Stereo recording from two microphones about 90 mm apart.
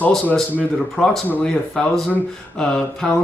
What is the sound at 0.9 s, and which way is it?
Speech, 5° left (ahead or behind).